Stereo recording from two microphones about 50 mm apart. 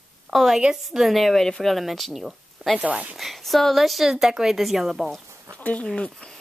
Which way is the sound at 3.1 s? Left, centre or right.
Centre.